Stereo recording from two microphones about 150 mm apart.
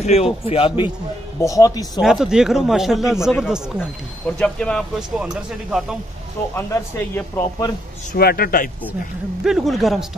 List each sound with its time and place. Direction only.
0.0 s a man's voice: 45° left (ahead or behind)
1.4 s speech: 20° left (ahead or behind)
2.0 s speech: 5° right (ahead or behind)
6.5 s speech: 15° left (ahead or behind)
8.1 s a man's voice: 85° left
9.4 s speech: centre (ahead or behind)